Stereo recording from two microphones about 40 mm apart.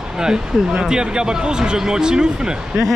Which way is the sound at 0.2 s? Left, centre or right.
Centre.